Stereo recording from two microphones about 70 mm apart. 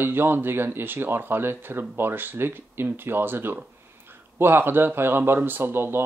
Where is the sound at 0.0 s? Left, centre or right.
Right.